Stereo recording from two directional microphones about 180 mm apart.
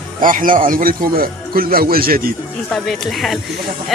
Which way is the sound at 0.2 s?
50° right (ahead or behind).